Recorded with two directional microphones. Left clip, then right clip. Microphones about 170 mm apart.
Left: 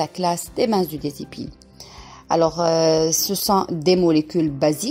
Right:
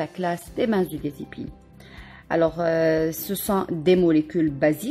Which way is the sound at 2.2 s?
10° left (ahead or behind).